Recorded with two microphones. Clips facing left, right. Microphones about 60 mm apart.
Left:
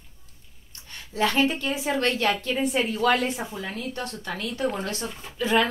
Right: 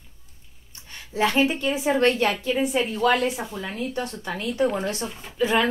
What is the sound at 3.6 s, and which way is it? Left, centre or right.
A woman's voice, right.